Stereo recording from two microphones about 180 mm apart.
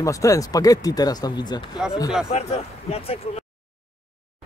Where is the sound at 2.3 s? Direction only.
35° left (ahead or behind).